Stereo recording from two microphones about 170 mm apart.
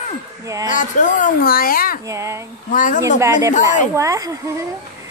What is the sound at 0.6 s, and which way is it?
Speech, 50° left (ahead or behind).